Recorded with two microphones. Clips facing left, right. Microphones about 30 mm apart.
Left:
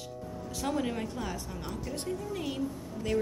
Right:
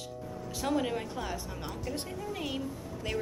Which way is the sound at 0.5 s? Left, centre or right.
Centre.